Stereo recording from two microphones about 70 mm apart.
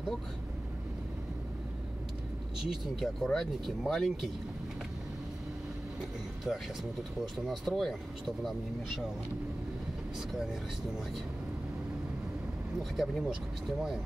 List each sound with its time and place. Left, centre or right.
2.6 s speech: centre
5.9 s speech: centre
12.9 s speech: centre